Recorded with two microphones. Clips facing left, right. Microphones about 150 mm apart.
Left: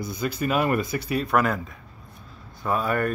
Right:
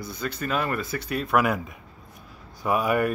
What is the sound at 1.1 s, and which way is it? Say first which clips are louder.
Speech: even; centre (ahead or behind).